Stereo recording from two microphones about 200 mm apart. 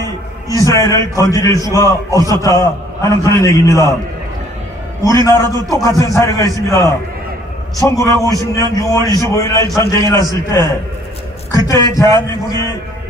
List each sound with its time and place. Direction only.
0.0 s a man's voice: 15° left (ahead or behind)
5.2 s a man's voice: 15° left (ahead or behind)